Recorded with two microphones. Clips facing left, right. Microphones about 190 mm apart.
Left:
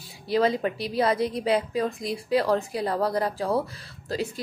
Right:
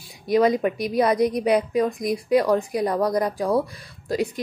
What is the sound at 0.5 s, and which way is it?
A woman's voice, 15° right (ahead or behind).